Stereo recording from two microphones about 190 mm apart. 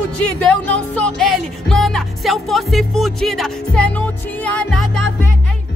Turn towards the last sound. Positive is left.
turn(degrees=5)  # may be behind; listen again after turning